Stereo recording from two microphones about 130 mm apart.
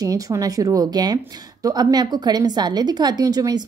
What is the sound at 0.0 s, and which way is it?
A woman's voice, 25° right (ahead or behind).